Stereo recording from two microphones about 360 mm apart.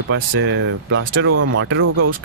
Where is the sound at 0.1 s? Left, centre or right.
Right.